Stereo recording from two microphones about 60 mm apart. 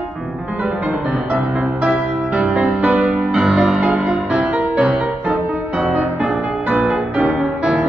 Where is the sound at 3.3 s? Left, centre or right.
Centre; by 7.5 s right.